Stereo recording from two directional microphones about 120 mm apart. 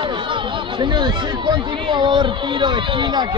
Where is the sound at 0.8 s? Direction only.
40° right (ahead or behind).